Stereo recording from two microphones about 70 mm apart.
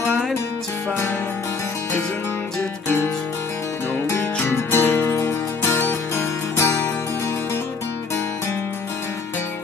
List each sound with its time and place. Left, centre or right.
4.2 s music: left
5.1 s music: left